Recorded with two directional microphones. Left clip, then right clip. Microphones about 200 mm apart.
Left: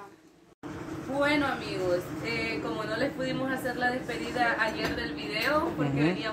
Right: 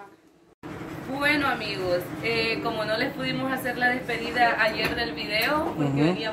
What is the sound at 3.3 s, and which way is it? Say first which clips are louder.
A woman's voice: right 3 dB; 10° right (ahead or behind).